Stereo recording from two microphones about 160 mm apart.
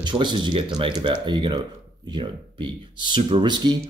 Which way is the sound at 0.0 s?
30° right (ahead or behind).